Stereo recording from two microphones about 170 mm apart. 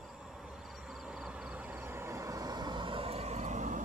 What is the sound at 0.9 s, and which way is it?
Vehicle, 5° right (ahead or behind).